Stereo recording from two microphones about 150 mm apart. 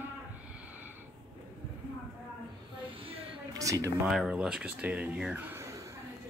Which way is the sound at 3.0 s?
40° right (ahead or behind).